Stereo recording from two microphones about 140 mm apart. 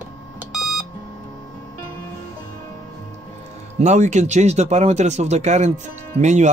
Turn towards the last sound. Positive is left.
turn(degrees=-60)  # may be behind; listen again after turning